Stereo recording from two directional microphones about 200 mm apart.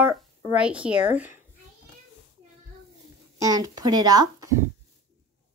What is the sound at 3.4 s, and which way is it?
Speech, 20° right (ahead or behind).